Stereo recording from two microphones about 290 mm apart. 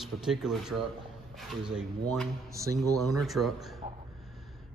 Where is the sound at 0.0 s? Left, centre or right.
Centre.